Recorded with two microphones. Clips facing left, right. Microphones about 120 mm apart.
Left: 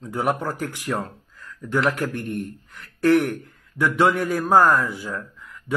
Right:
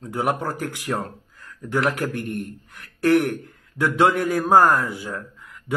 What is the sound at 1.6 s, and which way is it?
Speech, 15° right (ahead or behind).